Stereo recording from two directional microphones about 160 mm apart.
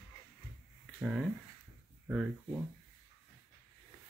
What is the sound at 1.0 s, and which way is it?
Speech, 5° right (ahead or behind).